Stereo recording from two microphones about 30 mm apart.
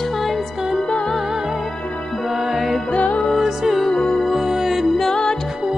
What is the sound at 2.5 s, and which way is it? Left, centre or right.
Music, centre.